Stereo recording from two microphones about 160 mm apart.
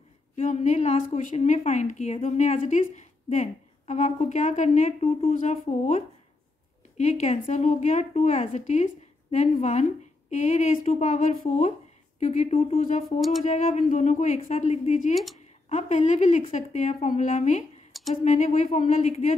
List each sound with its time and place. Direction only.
0.4 s a woman's voice: 50° left (ahead or behind)
7.0 s a woman's voice: 45° left (ahead or behind)